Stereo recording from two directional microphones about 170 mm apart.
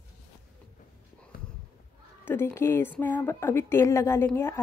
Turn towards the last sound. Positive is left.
turn(degrees=15)  # may be behind; listen again after turning